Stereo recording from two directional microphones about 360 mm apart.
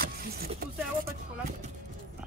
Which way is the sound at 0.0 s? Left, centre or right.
Right.